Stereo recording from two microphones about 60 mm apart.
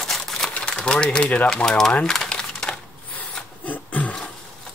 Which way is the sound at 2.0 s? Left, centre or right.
Centre.